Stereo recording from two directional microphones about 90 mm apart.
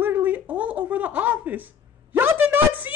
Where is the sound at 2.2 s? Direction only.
25° right (ahead or behind).